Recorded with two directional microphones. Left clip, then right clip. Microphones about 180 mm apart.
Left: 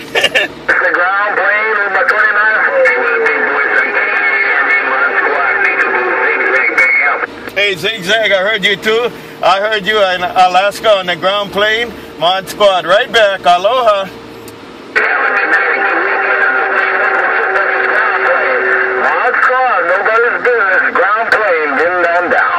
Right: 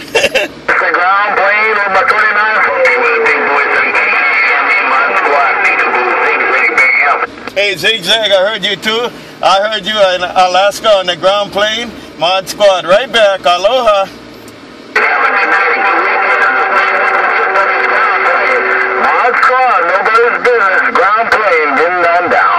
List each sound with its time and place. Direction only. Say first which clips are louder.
0.1 s radio: right 1 dB; 30° right (ahead or behind)
7.5 s a sound: right 2 dB; 30° right (ahead or behind)
10.4 s speech: even; 40° right (ahead or behind)
15.0 s radio: right 2 dB; 45° right (ahead or behind)